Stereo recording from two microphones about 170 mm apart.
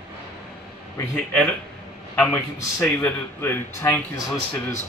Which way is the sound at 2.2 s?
15° left (ahead or behind).